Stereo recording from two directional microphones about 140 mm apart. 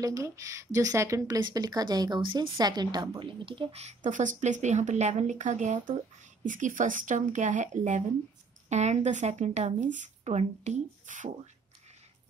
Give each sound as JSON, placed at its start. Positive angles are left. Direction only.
{"t": 0.0, "sound": "a woman's voice", "side_deg": -25}